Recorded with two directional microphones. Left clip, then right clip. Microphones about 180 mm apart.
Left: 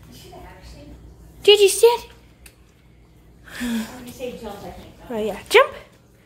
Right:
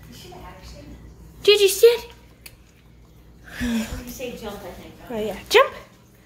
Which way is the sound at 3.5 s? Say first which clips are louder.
Even; 20° left (ahead or behind).